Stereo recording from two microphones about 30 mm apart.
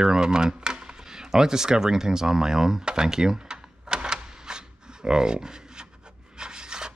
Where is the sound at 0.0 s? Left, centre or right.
Right.